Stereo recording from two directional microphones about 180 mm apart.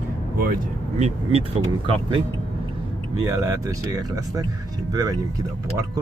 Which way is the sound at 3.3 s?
20° right (ahead or behind).